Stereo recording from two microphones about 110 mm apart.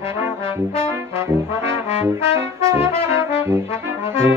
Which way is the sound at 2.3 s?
25° right (ahead or behind).